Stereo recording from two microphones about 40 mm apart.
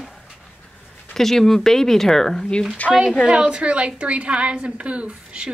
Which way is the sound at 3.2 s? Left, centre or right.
Right.